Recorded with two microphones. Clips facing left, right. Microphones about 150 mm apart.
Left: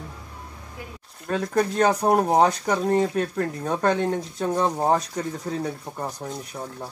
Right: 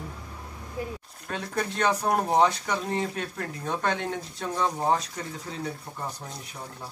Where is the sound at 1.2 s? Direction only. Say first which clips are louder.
Left 8 dB; 45° left (ahead or behind).